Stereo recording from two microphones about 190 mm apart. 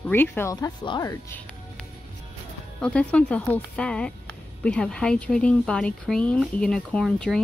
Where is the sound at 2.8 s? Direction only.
5° left (ahead or behind).